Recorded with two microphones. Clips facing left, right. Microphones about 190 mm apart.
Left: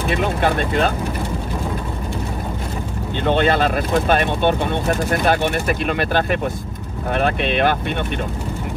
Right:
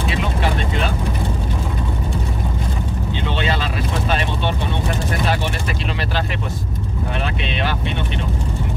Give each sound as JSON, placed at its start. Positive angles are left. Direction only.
{"t": 0.1, "sound": "speech", "side_deg": 55}
{"t": 3.3, "sound": "speech", "side_deg": 55}